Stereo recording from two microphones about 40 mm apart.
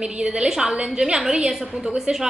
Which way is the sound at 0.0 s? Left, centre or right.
Right.